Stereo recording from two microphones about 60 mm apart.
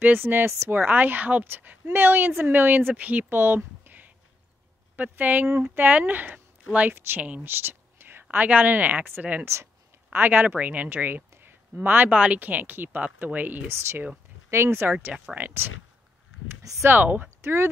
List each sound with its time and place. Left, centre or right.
0.0 s a woman's voice: right
0.5 s a woman's voice: right
3.3 s a sound: right
4.9 s speech: right
7.4 s a sound: right
8.5 s speech: right
9.4 s speech: right
10.1 s speech: right
14.5 s speech: right
14.9 s a woman's voice: right
16.7 s speech: right
17.0 s speech: right
17.4 s speech: right